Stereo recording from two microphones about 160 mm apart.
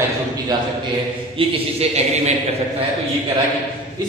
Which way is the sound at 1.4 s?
40° right (ahead or behind).